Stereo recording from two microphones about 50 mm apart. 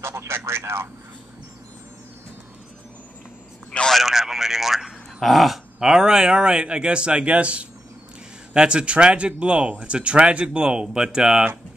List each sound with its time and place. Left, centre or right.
0.0 s speech: right
4.0 s speech: centre
5.8 s speech: centre